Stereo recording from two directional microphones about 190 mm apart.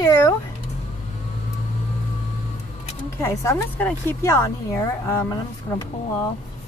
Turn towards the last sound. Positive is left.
turn(degrees=20)  # may be behind; listen again after turning